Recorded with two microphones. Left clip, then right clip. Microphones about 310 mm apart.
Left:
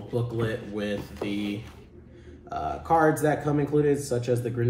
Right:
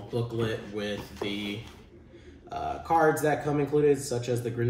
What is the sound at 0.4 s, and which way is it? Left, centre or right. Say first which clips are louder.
Speech: left 1 dB; centre.